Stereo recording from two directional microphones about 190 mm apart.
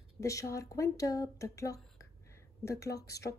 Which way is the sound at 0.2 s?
15° left (ahead or behind).